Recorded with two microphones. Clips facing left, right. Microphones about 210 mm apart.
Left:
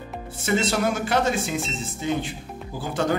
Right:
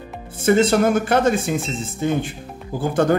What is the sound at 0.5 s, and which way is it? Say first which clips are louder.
Speech: right 8 dB; 55° right (ahead or behind).